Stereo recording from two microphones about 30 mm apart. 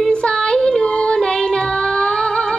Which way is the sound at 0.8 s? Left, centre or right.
Left.